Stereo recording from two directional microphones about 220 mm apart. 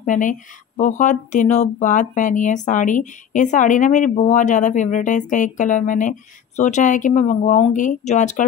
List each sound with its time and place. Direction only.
0.0 s speech: 35° left (ahead or behind)